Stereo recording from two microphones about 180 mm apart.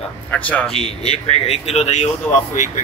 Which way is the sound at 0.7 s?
35° left (ahead or behind).